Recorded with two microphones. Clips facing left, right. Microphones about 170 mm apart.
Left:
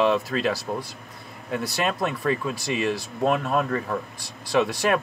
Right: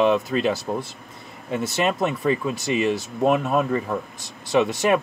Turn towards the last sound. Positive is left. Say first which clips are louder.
# right 3 dB
turn(degrees=-20)  # may be behind; listen again after turning